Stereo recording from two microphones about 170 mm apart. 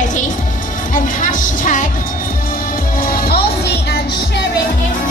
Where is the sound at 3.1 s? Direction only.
60° left (ahead or behind).